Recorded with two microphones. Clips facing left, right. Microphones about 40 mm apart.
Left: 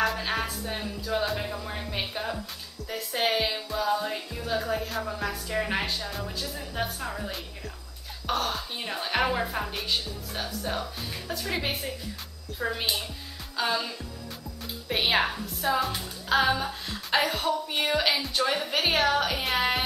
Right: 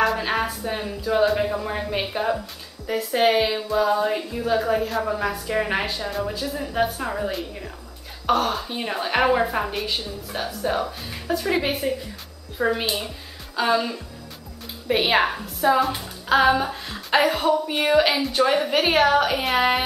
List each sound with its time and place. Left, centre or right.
0.0 s music: centre
0.5 s a woman's voice: centre
1.4 s a woman's voice: right
8.3 s a woman's voice: centre
12.5 s a woman's voice: right
12.8 s a woman's voice: centre